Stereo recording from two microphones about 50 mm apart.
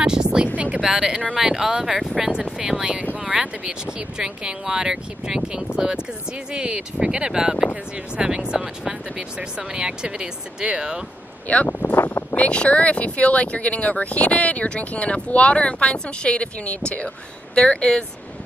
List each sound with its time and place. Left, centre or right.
0.0 s a sound: centre
0.7 s speech: centre
2.8 s speech: right
11.4 s speech: left
12.4 s speech: left